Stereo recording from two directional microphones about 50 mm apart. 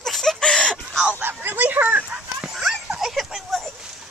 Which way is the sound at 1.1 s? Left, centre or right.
Right.